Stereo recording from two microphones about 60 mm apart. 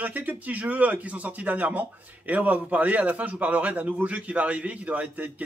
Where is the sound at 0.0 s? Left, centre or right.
Right.